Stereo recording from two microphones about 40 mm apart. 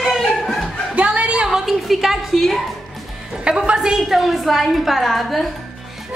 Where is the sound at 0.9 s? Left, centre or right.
Right.